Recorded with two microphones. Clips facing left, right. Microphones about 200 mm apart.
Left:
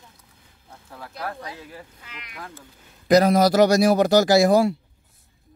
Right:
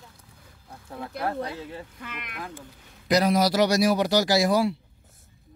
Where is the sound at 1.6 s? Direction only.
25° right (ahead or behind).